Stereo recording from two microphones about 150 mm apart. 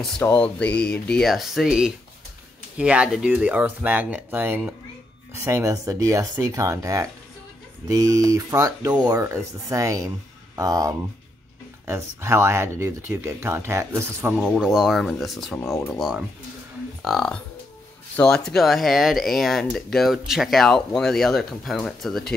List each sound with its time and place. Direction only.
0.2 s speech: 10° left (ahead or behind)